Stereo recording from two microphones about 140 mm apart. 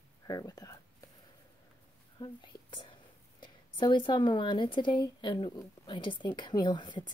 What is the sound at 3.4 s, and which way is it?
A woman's voice, 35° left (ahead or behind).